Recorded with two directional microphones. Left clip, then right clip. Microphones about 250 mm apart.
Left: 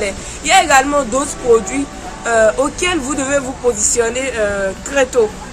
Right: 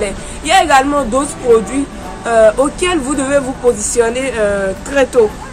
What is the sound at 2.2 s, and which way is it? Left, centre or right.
Speech, centre.